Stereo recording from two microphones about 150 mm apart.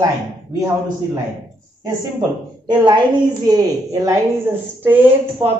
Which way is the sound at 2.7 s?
30° right (ahead or behind).